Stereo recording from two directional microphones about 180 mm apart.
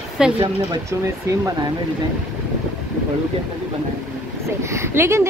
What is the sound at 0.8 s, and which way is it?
Speech, 15° right (ahead or behind).